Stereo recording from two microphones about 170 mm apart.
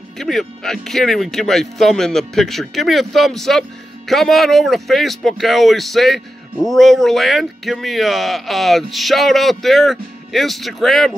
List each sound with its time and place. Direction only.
0.2 s speech: centre (ahead or behind)